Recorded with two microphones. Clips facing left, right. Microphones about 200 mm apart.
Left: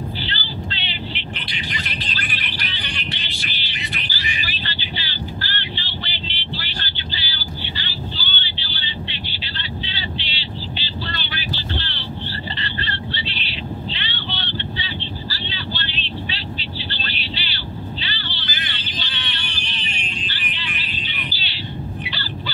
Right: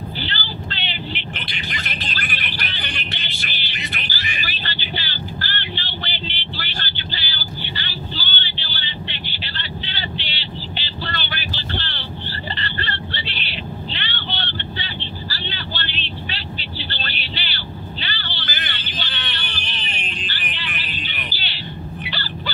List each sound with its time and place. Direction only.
0.2 s vehicle: 50° right (ahead or behind)
1.9 s music: 50° right (ahead or behind)
3.4 s vehicle: 50° right (ahead or behind)
12.5 s a sound: 55° right (ahead or behind)
18.0 s vehicle: 55° right (ahead or behind)
22.0 s a sound: 55° right (ahead or behind)